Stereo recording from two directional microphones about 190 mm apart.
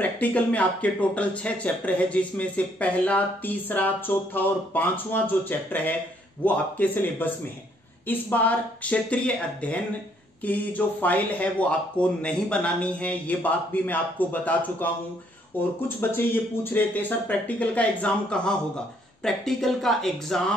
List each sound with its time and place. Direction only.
0.0 s speech: 5° left (ahead or behind)
16.7 s speech: 10° left (ahead or behind)